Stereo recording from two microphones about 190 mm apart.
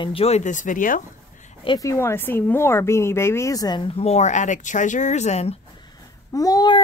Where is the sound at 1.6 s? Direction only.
20° left (ahead or behind).